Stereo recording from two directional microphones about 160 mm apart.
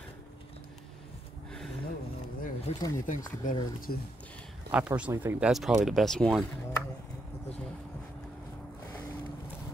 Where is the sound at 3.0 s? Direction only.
50° left (ahead or behind).